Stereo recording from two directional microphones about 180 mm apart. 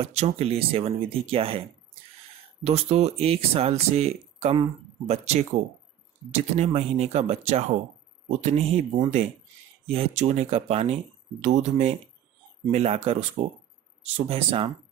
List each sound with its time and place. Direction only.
0.0 s speech: 35° right (ahead or behind)
2.6 s speech: 35° right (ahead or behind)